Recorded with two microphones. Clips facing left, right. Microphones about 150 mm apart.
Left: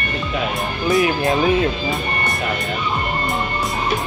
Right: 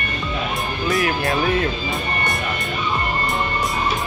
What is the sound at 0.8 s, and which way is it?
Speech, 20° left (ahead or behind).